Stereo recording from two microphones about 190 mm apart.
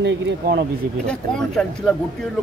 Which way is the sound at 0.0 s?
65° right (ahead or behind).